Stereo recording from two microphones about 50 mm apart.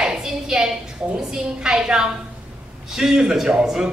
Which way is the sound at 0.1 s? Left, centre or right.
Centre.